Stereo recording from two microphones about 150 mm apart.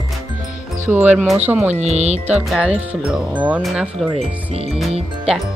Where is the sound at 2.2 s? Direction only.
5° right (ahead or behind).